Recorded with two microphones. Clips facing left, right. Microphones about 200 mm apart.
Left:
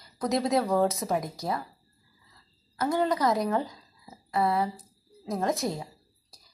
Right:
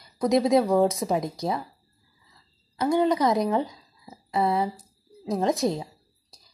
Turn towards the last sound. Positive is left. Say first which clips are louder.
# right 4 dB
turn(degrees=-20)  # may be behind; listen again after turning